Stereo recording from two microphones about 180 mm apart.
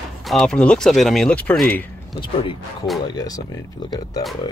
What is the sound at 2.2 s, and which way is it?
Speech, 30° left (ahead or behind).